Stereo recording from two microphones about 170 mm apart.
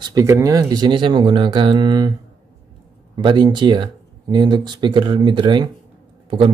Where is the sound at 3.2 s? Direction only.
25° right (ahead or behind).